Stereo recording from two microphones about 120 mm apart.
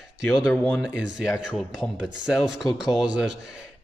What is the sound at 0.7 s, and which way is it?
A man's voice, 5° right (ahead or behind).